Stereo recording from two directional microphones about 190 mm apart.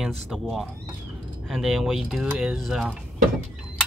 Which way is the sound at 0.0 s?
Centre (ahead or behind).